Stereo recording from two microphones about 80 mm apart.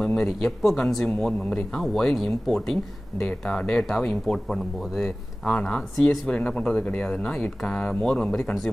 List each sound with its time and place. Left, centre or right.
0.0 s speech: centre